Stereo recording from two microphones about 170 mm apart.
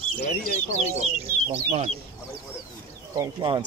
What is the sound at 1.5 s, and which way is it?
Speech, 35° right (ahead or behind).